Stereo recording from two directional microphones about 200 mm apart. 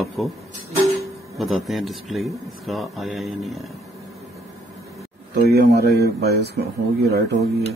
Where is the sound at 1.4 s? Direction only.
Centre (ahead or behind).